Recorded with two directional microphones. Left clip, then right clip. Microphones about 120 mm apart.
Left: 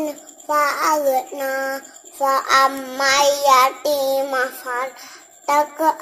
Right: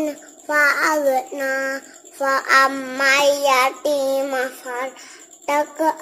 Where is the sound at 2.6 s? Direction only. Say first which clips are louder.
Even; centre (ahead or behind).